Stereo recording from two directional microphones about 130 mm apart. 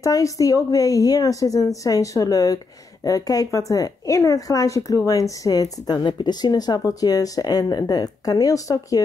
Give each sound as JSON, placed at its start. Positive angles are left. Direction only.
{"t": 0.0, "sound": "speech", "side_deg": 25}